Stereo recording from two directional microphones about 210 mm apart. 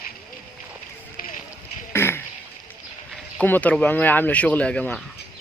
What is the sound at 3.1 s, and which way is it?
Speech, 5° left (ahead or behind).